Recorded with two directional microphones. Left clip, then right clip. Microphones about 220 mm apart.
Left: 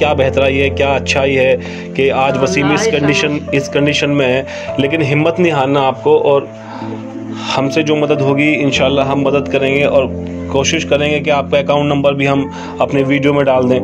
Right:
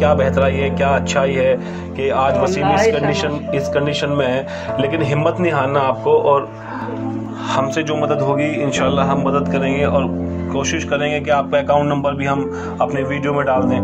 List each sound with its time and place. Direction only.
0.0 s speech: 50° left (ahead or behind)
7.4 s speech: 50° left (ahead or behind)